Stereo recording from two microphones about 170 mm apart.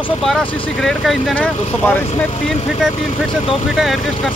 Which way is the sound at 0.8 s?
5° left (ahead or behind).